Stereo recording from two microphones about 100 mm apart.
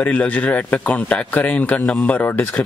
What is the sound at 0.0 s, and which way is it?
Speech, 15° left (ahead or behind).